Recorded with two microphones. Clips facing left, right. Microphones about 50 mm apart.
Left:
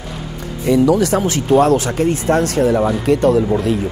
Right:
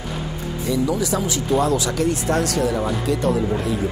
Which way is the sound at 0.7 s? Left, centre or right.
Left.